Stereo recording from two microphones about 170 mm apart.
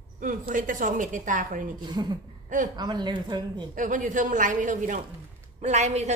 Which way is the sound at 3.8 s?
50° right (ahead or behind).